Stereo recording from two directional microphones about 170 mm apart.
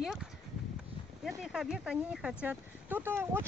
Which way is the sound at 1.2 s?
5° right (ahead or behind).